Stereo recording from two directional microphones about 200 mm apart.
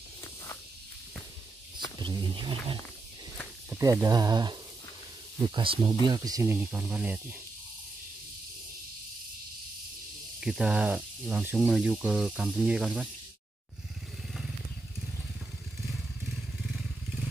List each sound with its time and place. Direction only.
2.0 s speech: 25° right (ahead or behind)
10.4 s speech: 5° right (ahead or behind)